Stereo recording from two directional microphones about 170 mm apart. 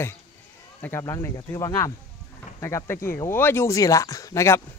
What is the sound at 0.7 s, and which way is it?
Speech, 15° left (ahead or behind).